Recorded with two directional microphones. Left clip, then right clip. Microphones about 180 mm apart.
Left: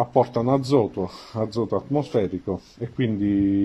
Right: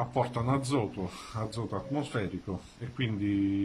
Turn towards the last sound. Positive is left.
turn(degrees=40)  # may be behind; listen again after turning